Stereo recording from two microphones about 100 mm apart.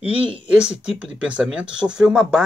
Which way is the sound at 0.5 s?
10° right (ahead or behind).